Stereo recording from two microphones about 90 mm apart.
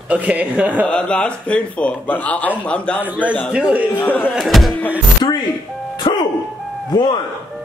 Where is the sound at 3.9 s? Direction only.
20° left (ahead or behind).